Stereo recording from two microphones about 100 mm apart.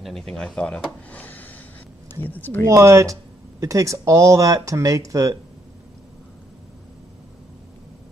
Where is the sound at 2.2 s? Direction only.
20° left (ahead or behind).